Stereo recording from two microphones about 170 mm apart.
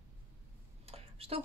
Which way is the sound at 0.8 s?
35° right (ahead or behind).